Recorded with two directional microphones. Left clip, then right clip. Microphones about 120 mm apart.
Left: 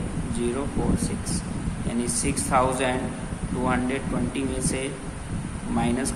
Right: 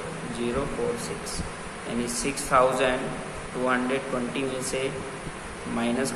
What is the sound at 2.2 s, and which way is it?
Speech, 55° left (ahead or behind).